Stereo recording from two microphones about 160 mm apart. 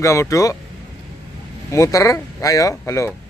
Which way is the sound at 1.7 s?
20° left (ahead or behind).